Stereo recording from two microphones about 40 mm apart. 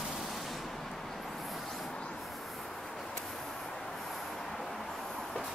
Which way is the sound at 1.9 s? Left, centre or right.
Left.